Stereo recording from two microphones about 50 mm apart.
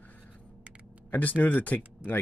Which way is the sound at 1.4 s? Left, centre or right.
Left.